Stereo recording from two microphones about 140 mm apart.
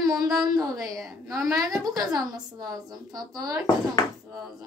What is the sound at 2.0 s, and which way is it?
A woman's voice, 25° right (ahead or behind).